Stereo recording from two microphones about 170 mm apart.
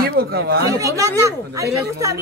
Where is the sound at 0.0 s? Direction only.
65° right (ahead or behind).